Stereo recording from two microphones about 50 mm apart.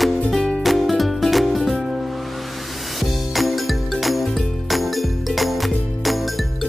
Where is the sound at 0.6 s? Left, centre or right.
Centre.